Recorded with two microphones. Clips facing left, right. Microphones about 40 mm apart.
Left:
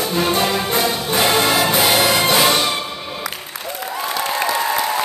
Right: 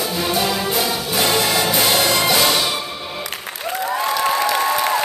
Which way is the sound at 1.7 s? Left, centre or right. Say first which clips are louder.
Left 2 dB; centre.